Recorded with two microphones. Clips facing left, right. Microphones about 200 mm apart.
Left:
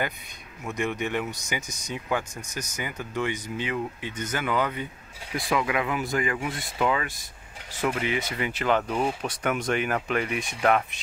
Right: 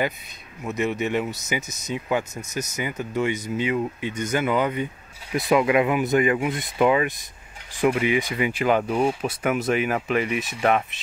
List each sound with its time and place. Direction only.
0.7 s speech: 5° right (ahead or behind)
5.3 s speech: 20° right (ahead or behind); by 11.0 s centre (ahead or behind)